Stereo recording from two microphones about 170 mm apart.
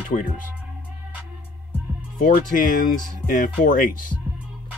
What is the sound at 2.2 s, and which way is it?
Speech, 50° left (ahead or behind).